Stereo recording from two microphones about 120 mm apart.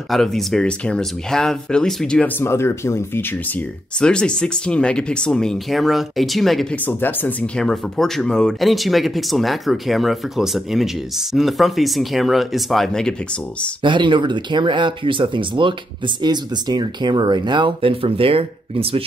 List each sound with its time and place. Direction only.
0.1 s speech: centre (ahead or behind)
2.4 s speech: 20° left (ahead or behind)
4.0 s speech: 5° left (ahead or behind)
6.9 s speech: 15° left (ahead or behind)
13.8 s speech: 40° right (ahead or behind)